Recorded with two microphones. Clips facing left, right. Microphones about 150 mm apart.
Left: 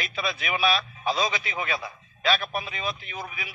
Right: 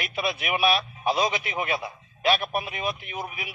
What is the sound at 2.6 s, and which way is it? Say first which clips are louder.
Speech: right 2 dB; 60° right (ahead or behind).